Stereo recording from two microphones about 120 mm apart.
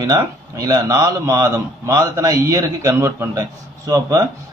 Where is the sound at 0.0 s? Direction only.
30° right (ahead or behind).